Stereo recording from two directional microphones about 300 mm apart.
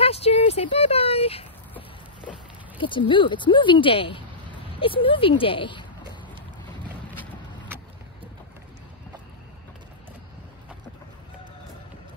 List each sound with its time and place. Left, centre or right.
0.0 s speech: centre
2.8 s speech: centre